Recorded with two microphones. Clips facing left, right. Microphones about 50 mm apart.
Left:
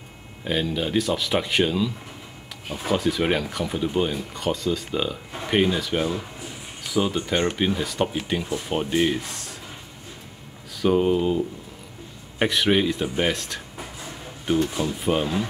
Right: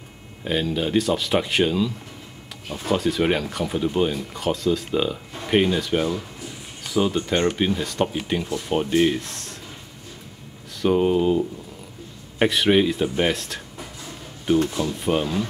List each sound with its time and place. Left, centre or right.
0.4 s speech: centre
6.0 s a sound: centre
6.9 s speech: centre
8.5 s speech: centre
8.7 s speech: centre
10.8 s speech: centre